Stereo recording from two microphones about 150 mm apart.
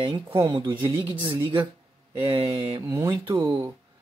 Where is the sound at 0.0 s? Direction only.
35° right (ahead or behind).